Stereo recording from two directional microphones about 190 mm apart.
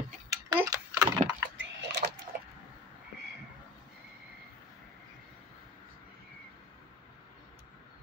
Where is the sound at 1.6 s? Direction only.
65° right (ahead or behind).